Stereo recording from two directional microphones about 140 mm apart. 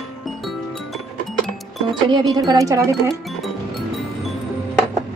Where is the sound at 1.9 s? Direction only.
30° right (ahead or behind).